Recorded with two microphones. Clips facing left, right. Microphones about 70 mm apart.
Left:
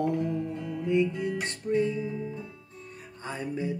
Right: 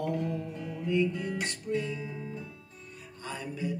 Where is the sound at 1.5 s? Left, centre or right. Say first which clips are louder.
Left 6 dB; left.